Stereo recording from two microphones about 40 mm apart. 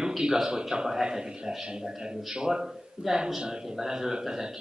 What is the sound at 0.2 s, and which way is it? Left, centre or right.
A man's voice, centre.